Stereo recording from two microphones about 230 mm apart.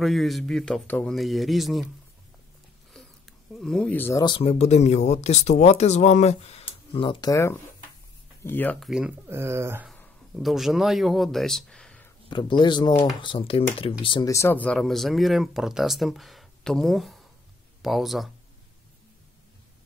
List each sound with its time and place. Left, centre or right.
0.0 s speech: centre
2.9 s speech: centre
9.8 s speech: centre
12.3 s speech: left; by 18.3 s centre